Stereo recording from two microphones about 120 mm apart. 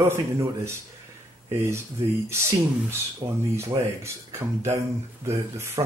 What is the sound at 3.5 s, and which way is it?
Speech, 25° right (ahead or behind).